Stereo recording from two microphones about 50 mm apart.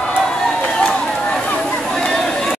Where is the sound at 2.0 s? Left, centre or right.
Centre.